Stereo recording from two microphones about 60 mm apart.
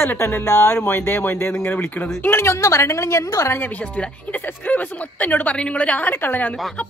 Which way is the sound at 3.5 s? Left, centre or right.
Left.